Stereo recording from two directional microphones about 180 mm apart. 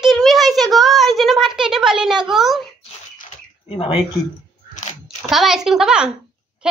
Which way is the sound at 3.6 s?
30° left (ahead or behind).